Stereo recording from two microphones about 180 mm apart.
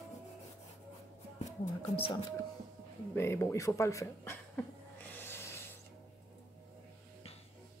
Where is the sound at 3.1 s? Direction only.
15° left (ahead or behind).